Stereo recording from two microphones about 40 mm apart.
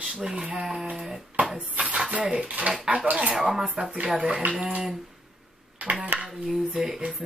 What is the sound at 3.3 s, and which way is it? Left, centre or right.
Speech, centre.